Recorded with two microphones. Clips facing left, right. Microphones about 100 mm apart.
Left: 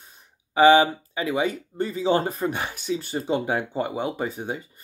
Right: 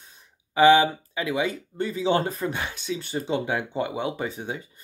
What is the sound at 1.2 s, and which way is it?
Speech, 45° left (ahead or behind).